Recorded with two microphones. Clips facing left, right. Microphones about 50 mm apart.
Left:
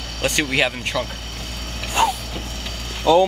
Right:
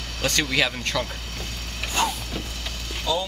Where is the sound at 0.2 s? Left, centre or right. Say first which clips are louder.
Left 3 dB; left.